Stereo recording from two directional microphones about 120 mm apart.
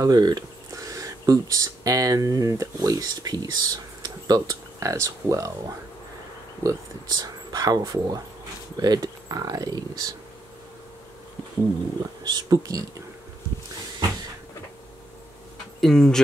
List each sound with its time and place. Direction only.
0.0 s speech: 30° right (ahead or behind)
6.6 s speech: 30° right (ahead or behind)
12.2 s speech: 35° right (ahead or behind)
15.8 s speech: 5° left (ahead or behind)